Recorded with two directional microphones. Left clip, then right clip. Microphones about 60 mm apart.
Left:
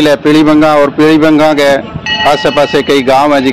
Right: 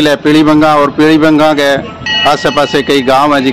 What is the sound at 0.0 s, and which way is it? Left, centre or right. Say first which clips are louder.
A man's voice: left 1 dB; centre.